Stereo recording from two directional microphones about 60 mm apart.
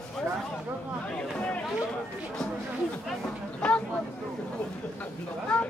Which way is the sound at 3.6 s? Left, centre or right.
Centre.